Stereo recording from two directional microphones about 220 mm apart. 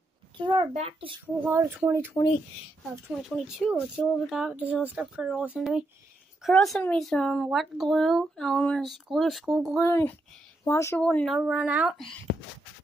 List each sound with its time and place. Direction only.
0.4 s a child's voice: 20° right (ahead or behind)
1.5 s speech: 10° right (ahead or behind)
3.2 s speech: centre (ahead or behind)
9.8 s a child's voice: 10° left (ahead or behind)